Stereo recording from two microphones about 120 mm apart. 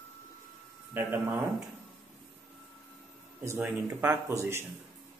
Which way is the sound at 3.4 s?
15° right (ahead or behind).